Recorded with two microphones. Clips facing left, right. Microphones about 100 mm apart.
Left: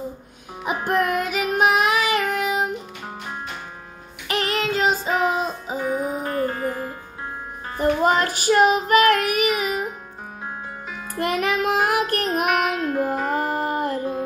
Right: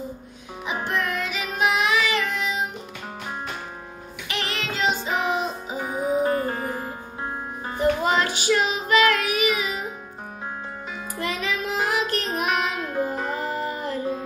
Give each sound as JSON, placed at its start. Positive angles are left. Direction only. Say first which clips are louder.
{"t": 0.7, "sound": "music", "louder": "left 5 dB", "side_deg": 50}
{"t": 4.3, "sound": "music", "louder": "left 7 dB", "side_deg": 45}
{"t": 5.8, "sound": "music", "louder": "right 1 dB", "side_deg": -15}
{"t": 7.8, "sound": "child singing", "louder": "left 2 dB", "side_deg": 45}
{"t": 11.1, "sound": "music", "louder": "left 6 dB", "side_deg": 55}
{"t": 12.4, "sound": "music", "louder": "left 4 dB", "side_deg": 5}
{"t": 13.3, "sound": "music", "louder": "left 4 dB", "side_deg": 50}